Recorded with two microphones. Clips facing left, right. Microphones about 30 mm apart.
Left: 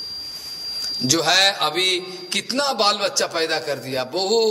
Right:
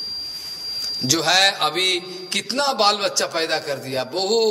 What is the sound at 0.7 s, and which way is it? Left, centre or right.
A man's voice, centre.